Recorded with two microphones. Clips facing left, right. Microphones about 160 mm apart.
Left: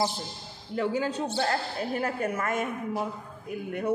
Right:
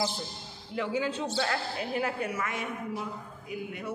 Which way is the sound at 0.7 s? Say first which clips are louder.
Left 3 dB; 40° left (ahead or behind).